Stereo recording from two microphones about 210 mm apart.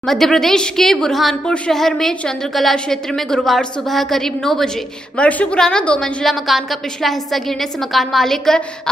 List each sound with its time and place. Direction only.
0.0 s a woman's voice: centre (ahead or behind)